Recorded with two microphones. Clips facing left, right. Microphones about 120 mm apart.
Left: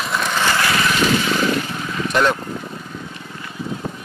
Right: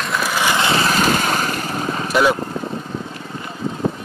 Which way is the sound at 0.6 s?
30° right (ahead or behind).